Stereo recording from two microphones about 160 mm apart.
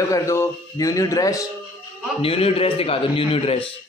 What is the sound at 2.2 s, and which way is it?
A man's voice, 35° left (ahead or behind).